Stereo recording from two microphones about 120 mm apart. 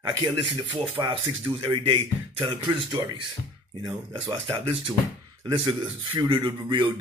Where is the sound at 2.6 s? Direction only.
35° right (ahead or behind).